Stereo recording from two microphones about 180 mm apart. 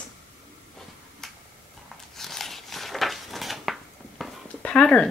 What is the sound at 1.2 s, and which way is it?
Tick-tock, centre (ahead or behind).